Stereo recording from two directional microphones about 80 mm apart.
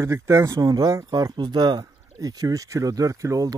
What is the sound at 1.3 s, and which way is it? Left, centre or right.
Speech, right.